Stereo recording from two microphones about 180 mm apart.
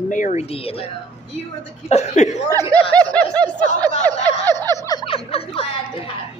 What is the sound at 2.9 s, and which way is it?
Snicker, 5° left (ahead or behind).